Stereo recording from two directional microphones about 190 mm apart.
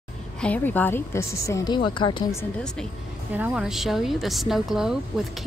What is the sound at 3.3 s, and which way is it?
A woman's voice, 5° right (ahead or behind).